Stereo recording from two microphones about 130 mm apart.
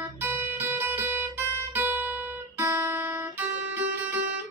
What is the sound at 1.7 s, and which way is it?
Music, 15° right (ahead or behind).